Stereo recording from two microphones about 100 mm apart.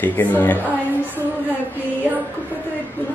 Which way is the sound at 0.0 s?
20° left (ahead or behind).